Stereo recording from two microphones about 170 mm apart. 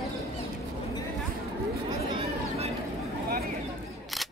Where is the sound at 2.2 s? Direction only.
35° right (ahead or behind).